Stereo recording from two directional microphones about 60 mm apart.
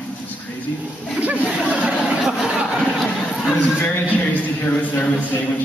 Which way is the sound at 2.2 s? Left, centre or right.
Centre.